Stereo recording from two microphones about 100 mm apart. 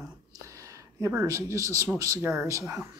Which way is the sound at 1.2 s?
30° right (ahead or behind).